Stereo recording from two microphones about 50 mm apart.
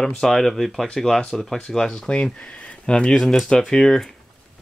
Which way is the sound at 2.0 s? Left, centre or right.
Left.